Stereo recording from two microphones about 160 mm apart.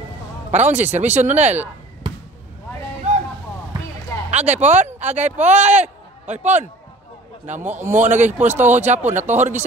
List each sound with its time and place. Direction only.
0.5 s speech: 45° right (ahead or behind)
4.3 s speech: 45° right (ahead or behind)